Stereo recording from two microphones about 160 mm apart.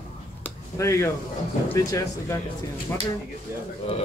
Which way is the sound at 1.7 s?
20° left (ahead or behind).